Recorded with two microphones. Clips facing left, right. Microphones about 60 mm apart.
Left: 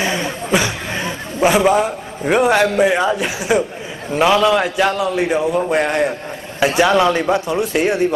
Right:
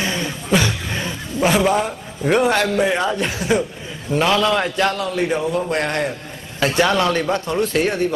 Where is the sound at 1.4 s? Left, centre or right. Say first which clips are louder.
Left 3 dB; centre.